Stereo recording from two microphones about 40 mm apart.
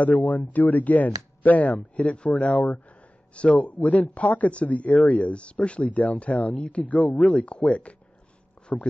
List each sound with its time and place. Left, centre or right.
0.0 s speech: left